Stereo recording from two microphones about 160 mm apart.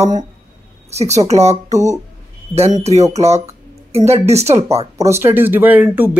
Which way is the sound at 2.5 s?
40° right (ahead or behind).